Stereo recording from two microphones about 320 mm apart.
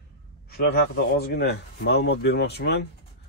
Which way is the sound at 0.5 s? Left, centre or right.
Left.